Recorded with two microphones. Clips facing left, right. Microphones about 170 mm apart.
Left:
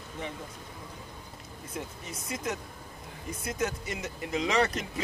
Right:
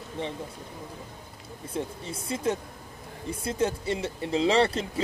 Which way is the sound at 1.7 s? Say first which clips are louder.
Right 6 dB; 30° right (ahead or behind).